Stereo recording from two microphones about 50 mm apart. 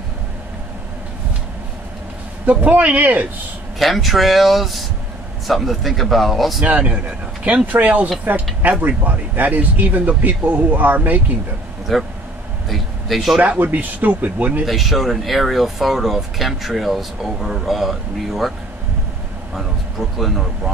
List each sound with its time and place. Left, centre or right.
2.5 s speech: right
3.8 s speech: centre
6.6 s speech: right
11.9 s speech: centre
12.6 s vehicle: centre
13.6 s speech: right
14.7 s speech: centre
20.2 s speech: centre